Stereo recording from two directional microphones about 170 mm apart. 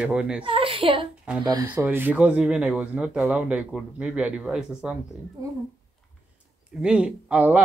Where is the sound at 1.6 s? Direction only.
10° right (ahead or behind).